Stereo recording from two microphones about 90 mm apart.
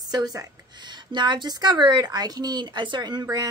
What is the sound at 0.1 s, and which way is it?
Speech, 45° right (ahead or behind).